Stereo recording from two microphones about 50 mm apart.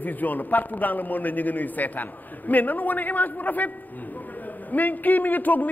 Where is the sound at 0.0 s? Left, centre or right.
Left.